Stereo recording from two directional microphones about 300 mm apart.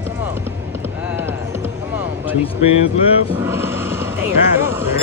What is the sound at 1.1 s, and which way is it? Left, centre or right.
Music, centre.